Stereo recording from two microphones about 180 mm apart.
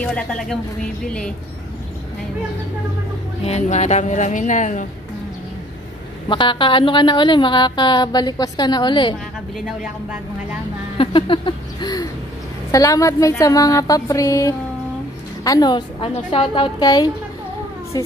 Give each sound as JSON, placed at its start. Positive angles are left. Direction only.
{"t": 0.0, "sound": "speech", "side_deg": 5}
{"t": 3.4, "sound": "speech", "side_deg": 40}
{"t": 6.2, "sound": "a woman's voice", "side_deg": 25}
{"t": 11.0, "sound": "a sound", "side_deg": 30}
{"t": 12.7, "sound": "a woman's voice", "side_deg": 20}